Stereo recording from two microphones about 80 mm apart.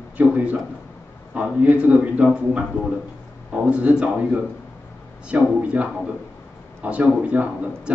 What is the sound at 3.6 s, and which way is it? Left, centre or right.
Speech, centre.